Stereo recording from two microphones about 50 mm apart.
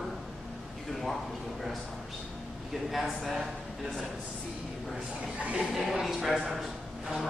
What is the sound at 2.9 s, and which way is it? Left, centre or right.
Speech, centre.